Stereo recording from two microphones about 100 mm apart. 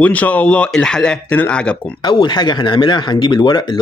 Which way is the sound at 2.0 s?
50° left (ahead or behind).